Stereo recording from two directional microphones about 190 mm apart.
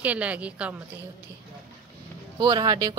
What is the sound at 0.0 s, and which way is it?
Speech, 5° right (ahead or behind).